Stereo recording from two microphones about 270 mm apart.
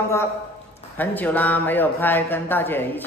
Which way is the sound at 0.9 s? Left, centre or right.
Centre.